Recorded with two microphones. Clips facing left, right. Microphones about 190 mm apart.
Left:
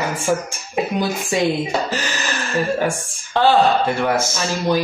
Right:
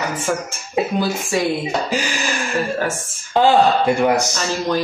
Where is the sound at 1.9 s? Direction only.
10° right (ahead or behind).